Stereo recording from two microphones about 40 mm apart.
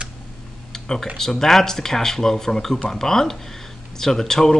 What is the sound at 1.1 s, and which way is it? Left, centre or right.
Speech, centre.